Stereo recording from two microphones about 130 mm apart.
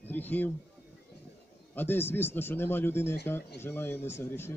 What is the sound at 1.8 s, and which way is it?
A man's voice, 15° left (ahead or behind).